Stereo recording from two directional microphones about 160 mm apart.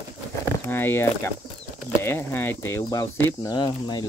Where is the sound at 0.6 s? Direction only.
15° left (ahead or behind).